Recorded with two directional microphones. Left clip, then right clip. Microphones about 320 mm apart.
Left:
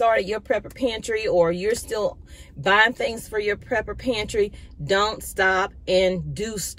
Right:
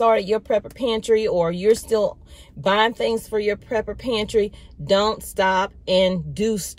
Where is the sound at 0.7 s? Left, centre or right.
Centre.